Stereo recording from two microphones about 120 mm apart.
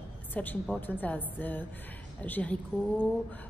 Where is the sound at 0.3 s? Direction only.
15° left (ahead or behind).